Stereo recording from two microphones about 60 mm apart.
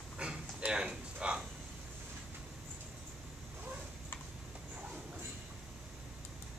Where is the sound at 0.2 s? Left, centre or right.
Centre.